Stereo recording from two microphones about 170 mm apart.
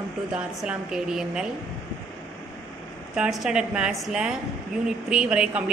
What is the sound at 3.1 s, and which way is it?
A woman's voice, 5° right (ahead or behind).